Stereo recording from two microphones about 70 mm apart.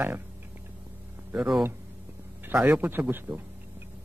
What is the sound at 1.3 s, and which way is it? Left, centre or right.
Speech, centre.